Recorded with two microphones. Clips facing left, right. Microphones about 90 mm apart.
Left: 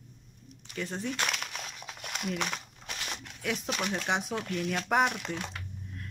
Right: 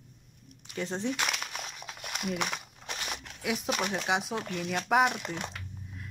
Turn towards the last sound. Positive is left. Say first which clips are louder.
# right 2 dB
turn(degrees=-10)  # may be behind; listen again after turning